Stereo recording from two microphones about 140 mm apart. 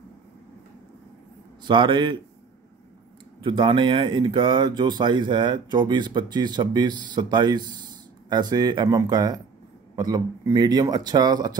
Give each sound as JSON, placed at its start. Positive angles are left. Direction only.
{"t": 1.6, "sound": "speech", "side_deg": -35}
{"t": 3.4, "sound": "speech", "side_deg": -35}